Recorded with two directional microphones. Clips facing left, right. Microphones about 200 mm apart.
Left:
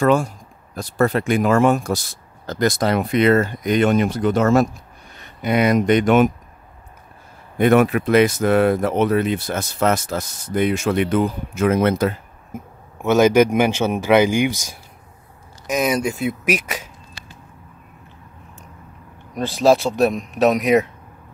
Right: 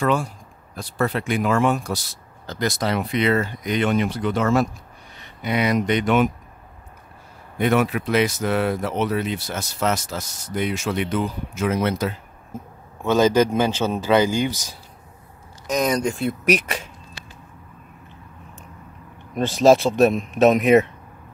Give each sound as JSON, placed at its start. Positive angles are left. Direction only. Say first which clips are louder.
{"t": 0.0, "sound": "speech", "louder": "left 5 dB", "side_deg": 45}
{"t": 7.5, "sound": "speech", "louder": "left 5 dB", "side_deg": 50}
{"t": 13.0, "sound": "speech", "louder": "left 3 dB", "side_deg": 10}
{"t": 19.7, "sound": "speech", "louder": "right 1 dB", "side_deg": 0}